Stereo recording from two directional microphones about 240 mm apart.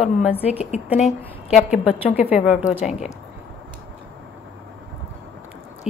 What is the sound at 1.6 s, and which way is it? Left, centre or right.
A woman's voice, centre.